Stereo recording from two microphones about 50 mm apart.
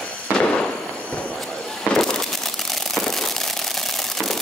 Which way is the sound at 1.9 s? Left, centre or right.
Centre.